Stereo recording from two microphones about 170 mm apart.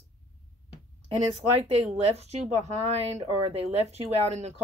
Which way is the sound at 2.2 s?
40° right (ahead or behind).